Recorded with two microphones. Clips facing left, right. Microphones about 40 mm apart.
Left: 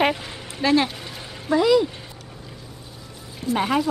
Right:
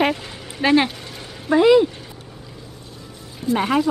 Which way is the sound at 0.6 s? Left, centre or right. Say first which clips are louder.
Right 3 dB; right.